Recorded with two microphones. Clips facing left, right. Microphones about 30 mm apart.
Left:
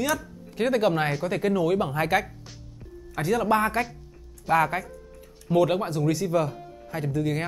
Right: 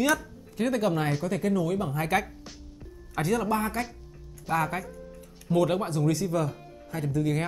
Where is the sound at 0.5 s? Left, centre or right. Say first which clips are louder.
Left 3 dB; left.